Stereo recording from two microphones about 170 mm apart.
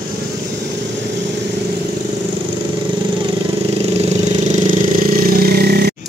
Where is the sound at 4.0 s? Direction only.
45° right (ahead or behind); by 5.9 s 65° right (ahead or behind).